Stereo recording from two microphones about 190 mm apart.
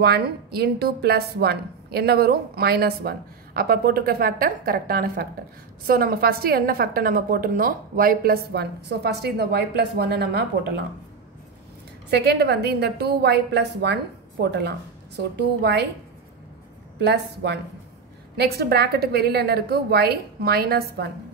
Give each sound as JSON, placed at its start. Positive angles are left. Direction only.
{"t": 0.0, "sound": "a woman's voice", "side_deg": -55}
{"t": 12.1, "sound": "a woman's voice", "side_deg": -60}
{"t": 17.0, "sound": "a woman's voice", "side_deg": -65}